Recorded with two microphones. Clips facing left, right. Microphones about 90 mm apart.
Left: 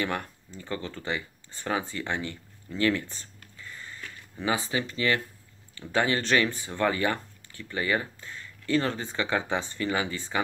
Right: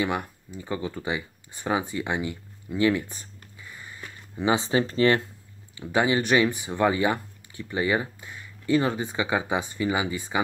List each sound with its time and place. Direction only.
0.0 s speech: 10° right (ahead or behind); by 5.2 s 35° right (ahead or behind)
5.8 s speech: 15° right (ahead or behind)